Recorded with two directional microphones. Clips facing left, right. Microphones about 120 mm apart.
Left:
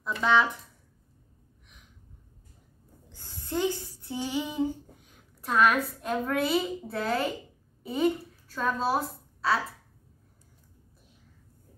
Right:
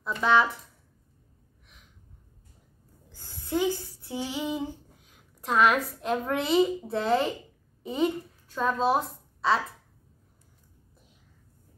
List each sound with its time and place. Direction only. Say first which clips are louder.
0.2 s speech: right 1 dB; 15° right (ahead or behind)
3.3 s a sound: right 2 dB; 10° right (ahead or behind)
5.4 s a woman's voice: right 1 dB; 15° right (ahead or behind)